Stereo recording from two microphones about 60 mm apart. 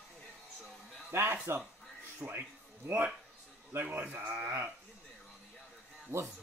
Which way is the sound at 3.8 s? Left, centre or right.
Right.